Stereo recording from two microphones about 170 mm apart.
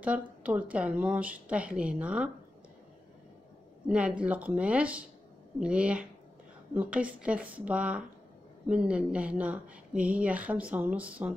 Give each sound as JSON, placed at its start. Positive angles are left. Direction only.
{"t": 0.0, "sound": "a woman's voice", "side_deg": -10}
{"t": 3.9, "sound": "a woman's voice", "side_deg": -5}